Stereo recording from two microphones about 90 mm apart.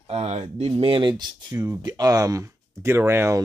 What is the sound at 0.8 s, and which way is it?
Speech, 65° right (ahead or behind).